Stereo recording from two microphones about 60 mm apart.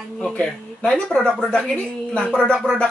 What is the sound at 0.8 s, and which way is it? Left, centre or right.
Speech, centre.